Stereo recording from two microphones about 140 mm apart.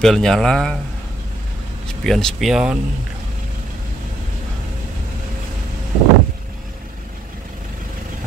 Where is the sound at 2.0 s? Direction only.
5° left (ahead or behind).